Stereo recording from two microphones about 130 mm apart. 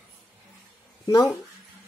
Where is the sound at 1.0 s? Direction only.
30° left (ahead or behind).